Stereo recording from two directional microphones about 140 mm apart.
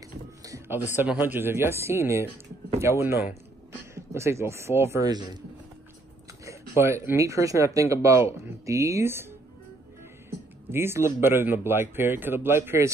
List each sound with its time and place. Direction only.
0.4 s music: 25° right (ahead or behind)
0.9 s speech: 15° right (ahead or behind)
6.4 s speech: 20° right (ahead or behind)
10.7 s speech: 15° right (ahead or behind)